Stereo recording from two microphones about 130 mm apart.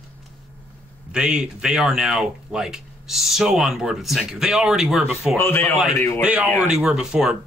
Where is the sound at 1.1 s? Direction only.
5° right (ahead or behind).